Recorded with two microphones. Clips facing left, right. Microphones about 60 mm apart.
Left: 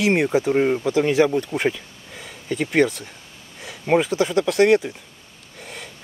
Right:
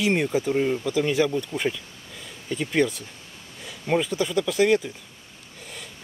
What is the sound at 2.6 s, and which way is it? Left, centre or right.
Speech, left.